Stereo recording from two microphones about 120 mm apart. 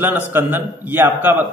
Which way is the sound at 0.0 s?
15° right (ahead or behind).